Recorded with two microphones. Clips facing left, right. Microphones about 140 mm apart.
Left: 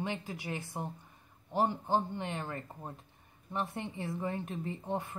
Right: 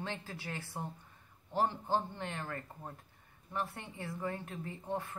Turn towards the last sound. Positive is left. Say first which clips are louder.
# left 3 dB
turn(degrees=20)  # may be behind; listen again after turning